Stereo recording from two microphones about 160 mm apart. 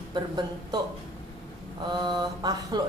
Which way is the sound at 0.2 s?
30° right (ahead or behind).